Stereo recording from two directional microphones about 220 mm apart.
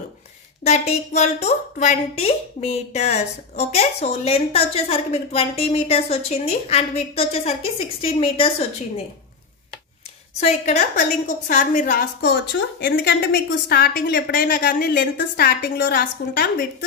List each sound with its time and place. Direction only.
0.7 s a woman's voice: 30° left (ahead or behind)
10.4 s a woman's voice: 30° left (ahead or behind)